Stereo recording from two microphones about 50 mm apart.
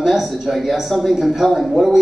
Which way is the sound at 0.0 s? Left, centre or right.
Centre.